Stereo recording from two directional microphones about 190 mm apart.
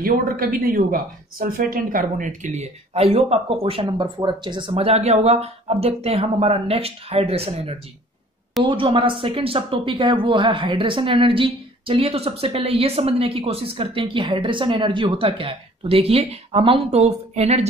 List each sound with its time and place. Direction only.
0.0 s a woman's voice: 50° right (ahead or behind)